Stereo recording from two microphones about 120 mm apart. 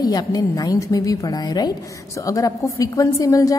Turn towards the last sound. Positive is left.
turn(degrees=30)  # may be behind; listen again after turning